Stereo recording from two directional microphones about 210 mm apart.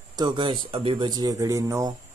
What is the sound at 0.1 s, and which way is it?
Speech, 20° right (ahead or behind).